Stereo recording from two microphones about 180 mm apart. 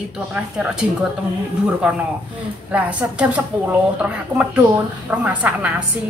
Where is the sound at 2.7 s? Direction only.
5° right (ahead or behind).